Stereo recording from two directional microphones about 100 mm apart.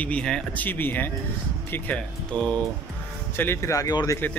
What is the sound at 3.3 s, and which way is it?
Speech, 20° left (ahead or behind).